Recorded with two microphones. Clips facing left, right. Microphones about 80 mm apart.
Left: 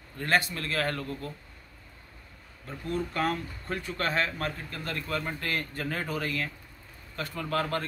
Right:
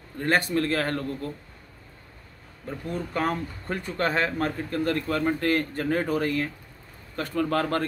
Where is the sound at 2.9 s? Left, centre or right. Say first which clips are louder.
Right 1 dB; right.